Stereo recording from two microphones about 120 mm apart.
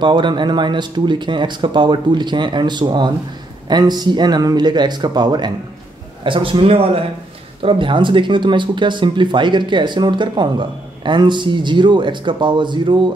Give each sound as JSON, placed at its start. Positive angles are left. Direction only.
{"t": 0.0, "sound": "speech", "side_deg": -40}